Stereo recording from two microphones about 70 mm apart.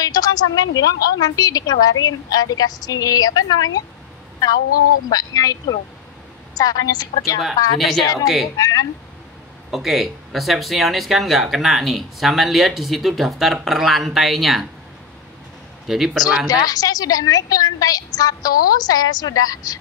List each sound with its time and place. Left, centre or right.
0.0 s a woman's voice: left
5.1 s a woman's voice: left
7.8 s speech: centre
8.5 s a woman's voice: left
9.7 s speech: centre
15.9 s speech: centre
16.4 s a woman's voice: left